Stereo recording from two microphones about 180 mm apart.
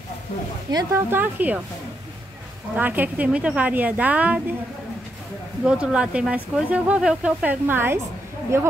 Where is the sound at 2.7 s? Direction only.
10° right (ahead or behind).